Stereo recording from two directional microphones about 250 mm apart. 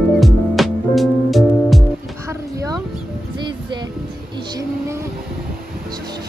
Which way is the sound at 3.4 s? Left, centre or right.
Centre.